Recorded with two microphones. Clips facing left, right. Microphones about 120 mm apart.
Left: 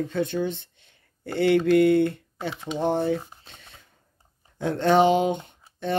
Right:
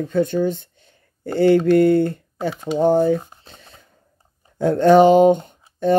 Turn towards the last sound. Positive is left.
turn(degrees=-45)  # may be behind; listen again after turning